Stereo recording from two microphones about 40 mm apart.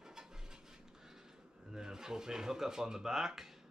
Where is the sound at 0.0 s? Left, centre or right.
Centre.